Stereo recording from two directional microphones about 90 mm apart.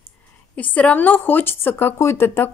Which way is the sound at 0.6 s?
15° left (ahead or behind).